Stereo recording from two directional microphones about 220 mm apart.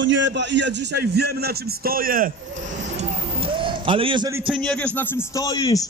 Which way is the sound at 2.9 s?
25° right (ahead or behind).